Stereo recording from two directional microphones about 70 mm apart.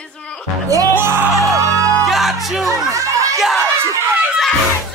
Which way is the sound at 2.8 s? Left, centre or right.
Right.